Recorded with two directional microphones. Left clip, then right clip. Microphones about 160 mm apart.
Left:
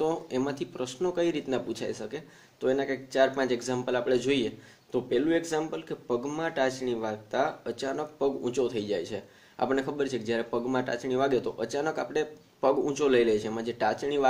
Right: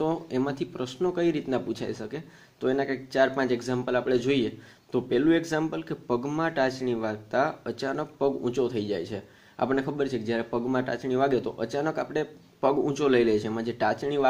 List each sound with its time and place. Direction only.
0.0 s speech: 30° right (ahead or behind)